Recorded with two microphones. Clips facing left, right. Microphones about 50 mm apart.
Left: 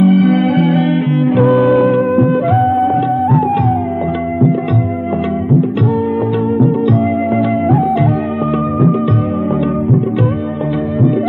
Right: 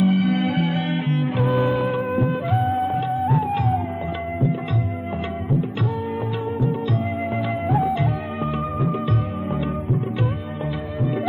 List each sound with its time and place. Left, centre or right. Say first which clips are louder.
0.0 s music: left 9 dB; left
7.3 s music: left 7 dB; centre